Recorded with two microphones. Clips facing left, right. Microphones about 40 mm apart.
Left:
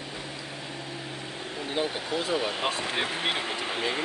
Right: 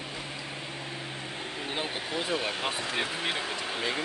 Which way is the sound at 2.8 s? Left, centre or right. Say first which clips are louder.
Left 2 dB; left.